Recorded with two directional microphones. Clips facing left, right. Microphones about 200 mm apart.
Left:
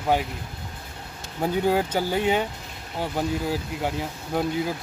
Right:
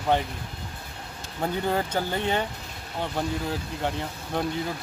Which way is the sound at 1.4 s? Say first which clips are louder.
Left 4 dB; 5° left (ahead or behind).